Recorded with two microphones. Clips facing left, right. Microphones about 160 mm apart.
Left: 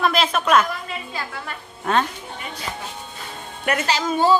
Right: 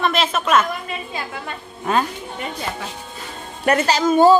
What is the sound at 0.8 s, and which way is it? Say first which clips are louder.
Speech: right 2 dB; 20° right (ahead or behind).